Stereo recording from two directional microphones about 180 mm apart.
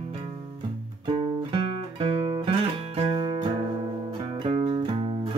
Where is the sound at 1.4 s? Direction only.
30° right (ahead or behind).